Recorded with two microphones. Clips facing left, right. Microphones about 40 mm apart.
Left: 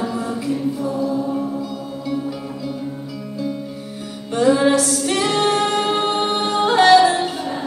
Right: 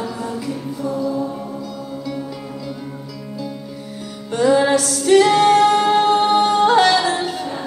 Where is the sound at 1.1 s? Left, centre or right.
Centre.